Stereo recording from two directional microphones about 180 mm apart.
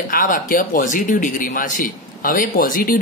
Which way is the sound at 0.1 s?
50° left (ahead or behind).